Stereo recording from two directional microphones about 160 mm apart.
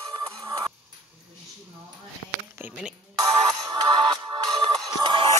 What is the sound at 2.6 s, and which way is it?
Speech, 5° right (ahead or behind).